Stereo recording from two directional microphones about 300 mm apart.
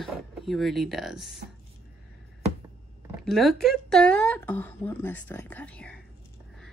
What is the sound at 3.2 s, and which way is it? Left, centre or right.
Speech, centre.